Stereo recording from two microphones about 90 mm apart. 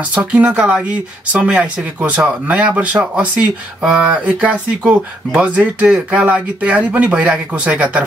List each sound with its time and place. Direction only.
0.1 s speech: 15° right (ahead or behind)